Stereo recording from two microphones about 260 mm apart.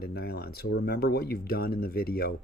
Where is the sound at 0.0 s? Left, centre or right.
Left.